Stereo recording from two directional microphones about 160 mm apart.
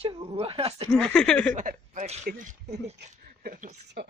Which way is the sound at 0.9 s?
5° left (ahead or behind).